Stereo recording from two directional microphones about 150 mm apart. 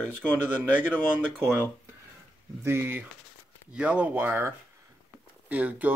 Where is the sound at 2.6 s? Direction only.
15° right (ahead or behind).